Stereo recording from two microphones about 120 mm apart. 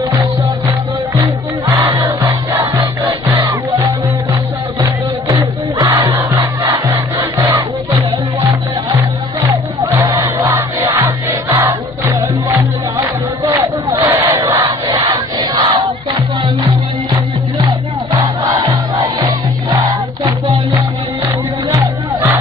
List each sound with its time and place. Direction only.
1.2 s music: 30° right (ahead or behind)
2.0 s music: 20° right (ahead or behind)
5.3 s crowd: 35° right (ahead or behind)
9.9 s music: 30° right (ahead or behind)
14.1 s crowd: 25° right (ahead or behind)
14.4 s crowd: 35° right (ahead or behind)
18.5 s music: 35° right (ahead or behind)